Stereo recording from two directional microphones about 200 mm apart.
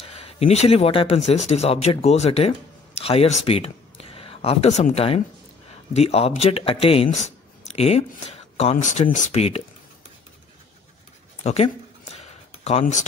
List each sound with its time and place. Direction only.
0.0 s speech: 30° left (ahead or behind)
11.4 s speech: 30° left (ahead or behind)
12.2 s a sound: 30° left (ahead or behind)